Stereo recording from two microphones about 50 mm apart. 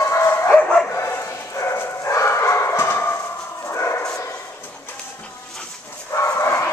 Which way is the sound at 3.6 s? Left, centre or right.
Left.